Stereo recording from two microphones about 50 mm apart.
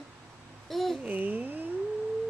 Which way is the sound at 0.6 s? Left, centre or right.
Centre.